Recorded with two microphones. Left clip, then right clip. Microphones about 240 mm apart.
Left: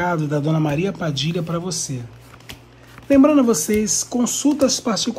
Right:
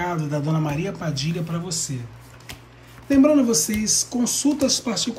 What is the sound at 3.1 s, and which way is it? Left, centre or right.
Speech, centre.